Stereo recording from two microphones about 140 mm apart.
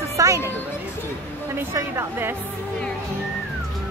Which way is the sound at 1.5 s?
20° right (ahead or behind).